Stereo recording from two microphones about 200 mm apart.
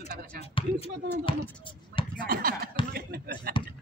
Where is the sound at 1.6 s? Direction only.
25° left (ahead or behind).